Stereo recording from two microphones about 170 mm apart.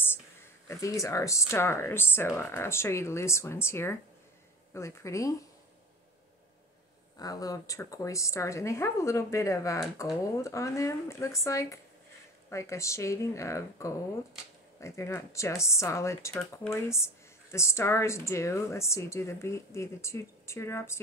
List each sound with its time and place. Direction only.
0.7 s speech: 20° left (ahead or behind)
7.2 s speech: 20° left (ahead or behind)